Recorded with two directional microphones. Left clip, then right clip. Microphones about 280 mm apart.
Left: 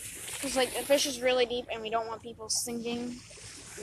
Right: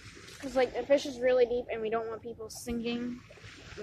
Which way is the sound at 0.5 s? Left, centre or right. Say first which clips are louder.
Even; centre.